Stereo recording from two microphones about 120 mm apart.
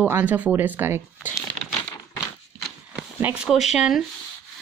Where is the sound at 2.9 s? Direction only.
10° right (ahead or behind).